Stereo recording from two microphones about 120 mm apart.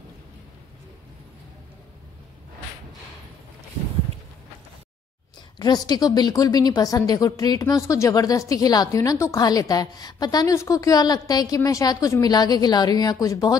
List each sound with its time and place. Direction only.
5.6 s a woman's voice: 35° left (ahead or behind)